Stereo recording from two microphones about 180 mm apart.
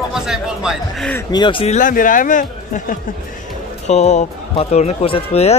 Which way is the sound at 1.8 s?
50° left (ahead or behind).